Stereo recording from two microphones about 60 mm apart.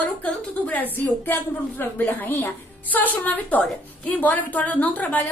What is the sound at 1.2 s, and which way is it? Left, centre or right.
A woman's voice, left.